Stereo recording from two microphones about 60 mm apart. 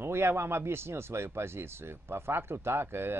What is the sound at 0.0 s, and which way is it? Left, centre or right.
Speech, right.